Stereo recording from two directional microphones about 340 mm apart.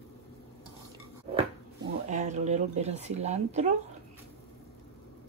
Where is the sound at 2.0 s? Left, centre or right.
Right.